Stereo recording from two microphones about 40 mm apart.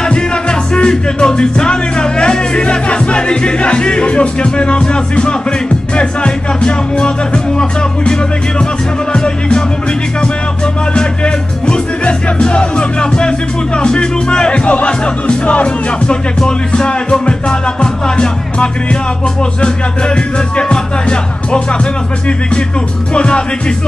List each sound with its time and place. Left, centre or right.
0.0 s music: left
11.0 s music: left
16.1 s music: centre
20.5 s music: left
23.1 s music: left